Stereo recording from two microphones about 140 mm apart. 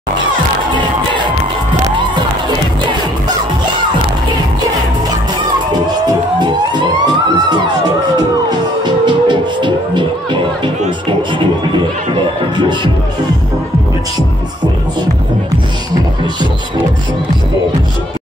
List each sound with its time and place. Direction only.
5.7 s music: 30° right (ahead or behind)
12.5 s music: 35° right (ahead or behind)